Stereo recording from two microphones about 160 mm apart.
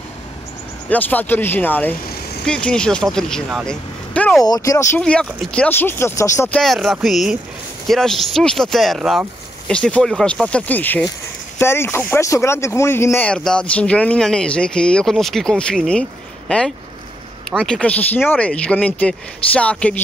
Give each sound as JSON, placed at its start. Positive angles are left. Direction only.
{"t": 0.8, "sound": "speech", "side_deg": 10}
{"t": 4.4, "sound": "speech", "side_deg": 20}
{"t": 5.0, "sound": "speech", "side_deg": 5}
{"t": 6.5, "sound": "speech", "side_deg": 0}